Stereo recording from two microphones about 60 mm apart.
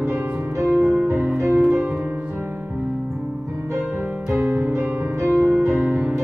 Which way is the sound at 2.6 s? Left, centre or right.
Right.